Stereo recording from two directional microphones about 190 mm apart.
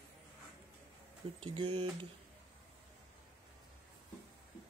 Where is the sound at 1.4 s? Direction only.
25° right (ahead or behind).